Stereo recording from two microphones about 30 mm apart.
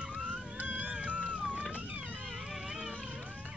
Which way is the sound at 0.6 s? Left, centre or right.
Right.